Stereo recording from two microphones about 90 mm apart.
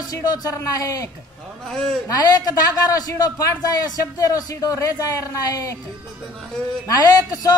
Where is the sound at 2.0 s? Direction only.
40° left (ahead or behind).